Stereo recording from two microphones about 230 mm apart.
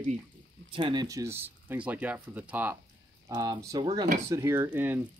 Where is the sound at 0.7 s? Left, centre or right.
Centre.